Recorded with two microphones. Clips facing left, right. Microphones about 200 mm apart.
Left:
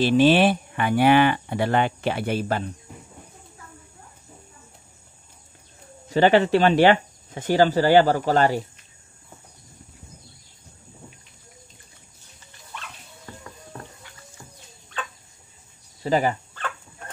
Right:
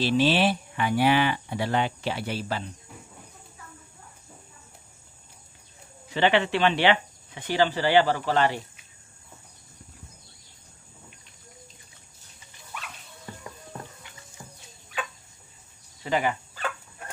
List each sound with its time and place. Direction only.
0.0 s speech: 50° left (ahead or behind)
6.0 s speech: 40° left (ahead or behind)
16.0 s speech: 40° left (ahead or behind)